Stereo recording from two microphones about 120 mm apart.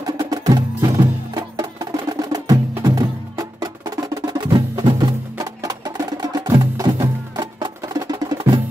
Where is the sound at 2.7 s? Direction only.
25° right (ahead or behind).